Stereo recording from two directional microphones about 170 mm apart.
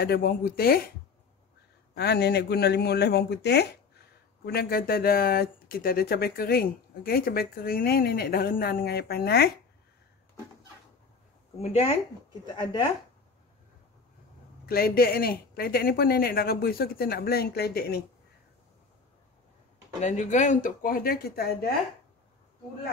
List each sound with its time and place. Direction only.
0.0 s speech: 65° left (ahead or behind)
2.0 s speech: 75° left (ahead or behind)
4.5 s speech: 65° left (ahead or behind)
11.6 s speech: 40° left (ahead or behind)
12.3 s a woman's voice: 25° left (ahead or behind)
14.7 s speech: 60° left (ahead or behind)
20.0 s speech: 45° left (ahead or behind); by 21.7 s 65° left (ahead or behind)